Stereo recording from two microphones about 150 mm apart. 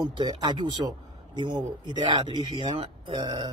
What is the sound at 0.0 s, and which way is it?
A man's voice, 30° right (ahead or behind).